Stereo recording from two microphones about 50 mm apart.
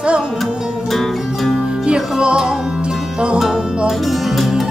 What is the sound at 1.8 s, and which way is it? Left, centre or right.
Music, centre.